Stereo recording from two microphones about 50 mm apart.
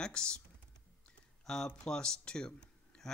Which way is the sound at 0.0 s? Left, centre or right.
Centre.